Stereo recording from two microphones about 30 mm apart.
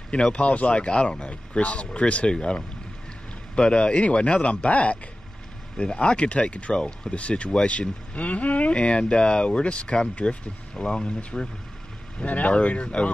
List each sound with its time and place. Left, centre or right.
0.1 s speech: left
2.2 s speech: left
4.0 s speech: left
4.6 s speech: left
5.8 s speech: left
8.7 s speech: left
12.3 s speech: left
12.6 s speech: left